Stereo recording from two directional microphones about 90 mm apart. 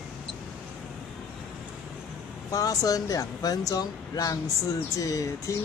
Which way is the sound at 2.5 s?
40° left (ahead or behind).